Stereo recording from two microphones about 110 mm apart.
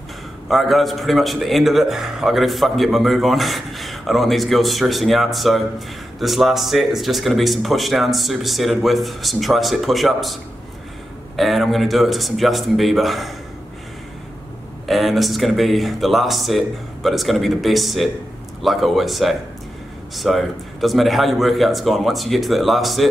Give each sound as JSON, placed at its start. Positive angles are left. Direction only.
{"t": 0.5, "sound": "a man's voice", "side_deg": 0}
{"t": 14.9, "sound": "a man's voice", "side_deg": 0}